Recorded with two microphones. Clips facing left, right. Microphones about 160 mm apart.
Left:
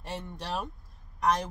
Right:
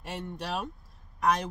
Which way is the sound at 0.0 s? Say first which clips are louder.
Right 1 dB; centre (ahead or behind).